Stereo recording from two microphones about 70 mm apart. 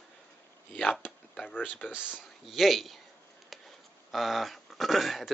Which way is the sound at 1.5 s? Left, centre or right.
Left.